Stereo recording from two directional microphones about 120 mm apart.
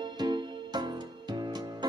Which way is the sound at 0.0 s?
35° right (ahead or behind).